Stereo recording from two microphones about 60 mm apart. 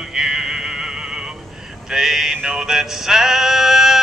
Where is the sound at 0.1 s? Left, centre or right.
Centre.